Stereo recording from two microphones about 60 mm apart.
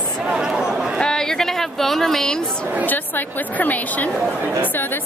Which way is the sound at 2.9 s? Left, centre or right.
Left.